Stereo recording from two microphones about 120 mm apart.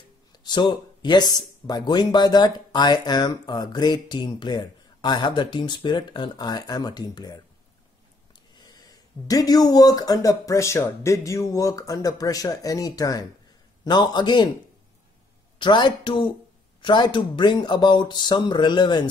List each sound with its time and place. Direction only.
0.3 s speech: 35° left (ahead or behind)
8.5 s speech: 35° left (ahead or behind)
15.6 s speech: 40° left (ahead or behind)